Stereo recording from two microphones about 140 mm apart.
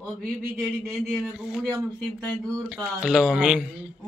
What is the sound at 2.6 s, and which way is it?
A man's voice, 10° right (ahead or behind).